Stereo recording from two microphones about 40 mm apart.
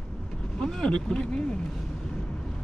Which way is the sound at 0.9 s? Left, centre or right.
Left.